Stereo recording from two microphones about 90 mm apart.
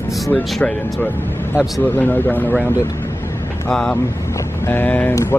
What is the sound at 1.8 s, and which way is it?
Speech, 20° left (ahead or behind).